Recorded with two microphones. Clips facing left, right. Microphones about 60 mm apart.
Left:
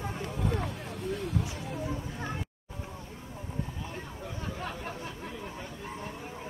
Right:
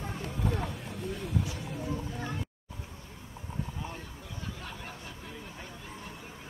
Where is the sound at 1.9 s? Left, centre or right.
Left.